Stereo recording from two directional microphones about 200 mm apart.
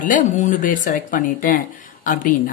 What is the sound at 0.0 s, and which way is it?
Speech, 40° left (ahead or behind).